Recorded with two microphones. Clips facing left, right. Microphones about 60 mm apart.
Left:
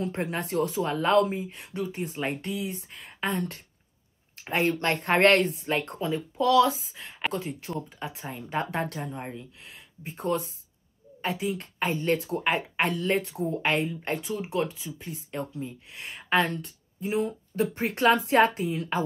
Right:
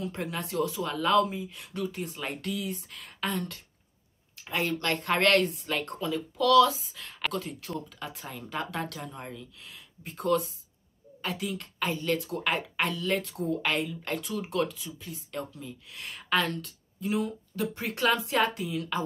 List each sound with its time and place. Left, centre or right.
0.0 s speech: left